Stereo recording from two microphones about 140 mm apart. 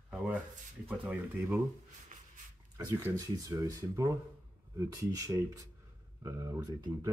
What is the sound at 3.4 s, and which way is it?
Speech, 25° right (ahead or behind).